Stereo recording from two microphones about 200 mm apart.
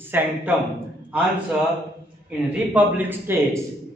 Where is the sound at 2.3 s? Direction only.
10° right (ahead or behind).